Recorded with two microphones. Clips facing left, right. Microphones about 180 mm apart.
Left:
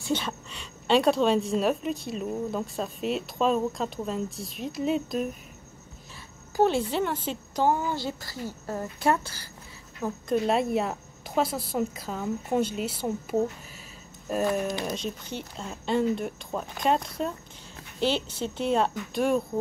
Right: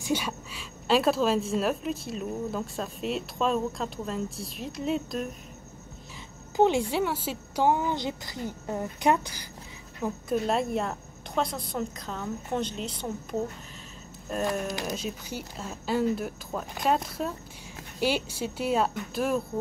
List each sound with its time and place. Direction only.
0.0 s a woman's voice: 10° right (ahead or behind)
6.5 s a woman's voice: 15° right (ahead or behind)
10.0 s a woman's voice: 5° right (ahead or behind)
14.3 s a woman's voice: 5° left (ahead or behind)
14.7 s a woman's voice: 5° right (ahead or behind)